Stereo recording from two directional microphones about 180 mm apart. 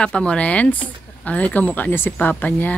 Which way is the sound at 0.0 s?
5° left (ahead or behind).